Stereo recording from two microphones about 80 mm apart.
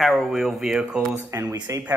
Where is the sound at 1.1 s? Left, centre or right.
Right.